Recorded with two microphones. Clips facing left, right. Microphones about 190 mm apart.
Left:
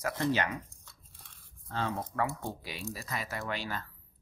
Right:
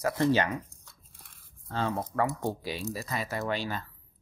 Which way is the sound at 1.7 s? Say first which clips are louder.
Right 4 dB; 35° right (ahead or behind).